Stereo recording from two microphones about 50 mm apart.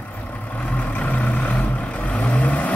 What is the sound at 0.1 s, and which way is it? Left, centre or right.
Vehicle, left.